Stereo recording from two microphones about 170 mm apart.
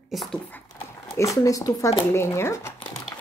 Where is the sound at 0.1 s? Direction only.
Centre (ahead or behind).